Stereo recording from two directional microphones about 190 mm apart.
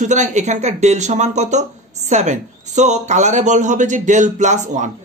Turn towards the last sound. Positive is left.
turn(degrees=-40)  # may be behind; listen again after turning